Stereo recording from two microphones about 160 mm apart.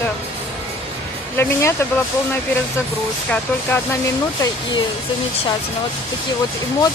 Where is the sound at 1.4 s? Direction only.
15° left (ahead or behind).